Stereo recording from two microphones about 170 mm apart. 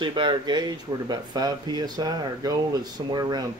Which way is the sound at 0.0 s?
30° right (ahead or behind).